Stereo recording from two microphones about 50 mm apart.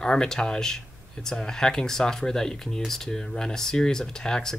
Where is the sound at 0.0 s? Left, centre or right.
Centre.